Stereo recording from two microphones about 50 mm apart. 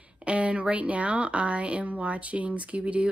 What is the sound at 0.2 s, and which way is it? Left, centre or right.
A woman's voice, right.